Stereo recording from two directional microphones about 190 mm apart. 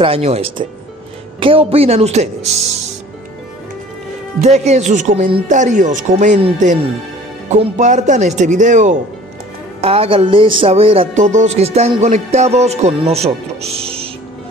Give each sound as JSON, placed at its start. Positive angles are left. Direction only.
{"t": 0.0, "sound": "speech", "side_deg": -30}
{"t": 4.4, "sound": "speech", "side_deg": -35}
{"t": 9.8, "sound": "speech", "side_deg": -30}